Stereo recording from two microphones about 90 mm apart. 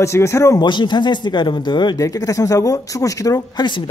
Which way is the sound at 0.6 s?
60° left (ahead or behind).